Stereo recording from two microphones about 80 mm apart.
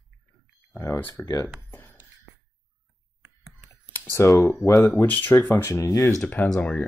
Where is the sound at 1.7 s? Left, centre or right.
Left.